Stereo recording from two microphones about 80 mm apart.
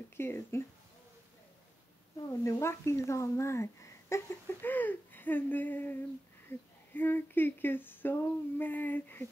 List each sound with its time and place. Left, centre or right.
0.2 s speech: left
2.2 s speech: left
4.6 s speech: left
6.5 s a sound: left
6.9 s speech: left